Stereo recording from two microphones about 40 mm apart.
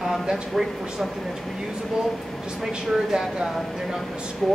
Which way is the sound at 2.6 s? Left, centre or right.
Centre.